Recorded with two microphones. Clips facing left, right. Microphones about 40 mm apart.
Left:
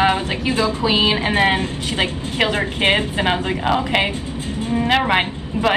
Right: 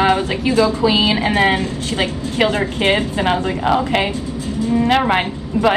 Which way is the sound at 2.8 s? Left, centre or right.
Left.